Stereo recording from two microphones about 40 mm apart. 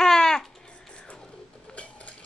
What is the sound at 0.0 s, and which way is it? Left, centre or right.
Babbling, centre.